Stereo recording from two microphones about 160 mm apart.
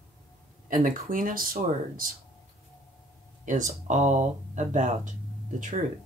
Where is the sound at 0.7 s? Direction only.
55° right (ahead or behind).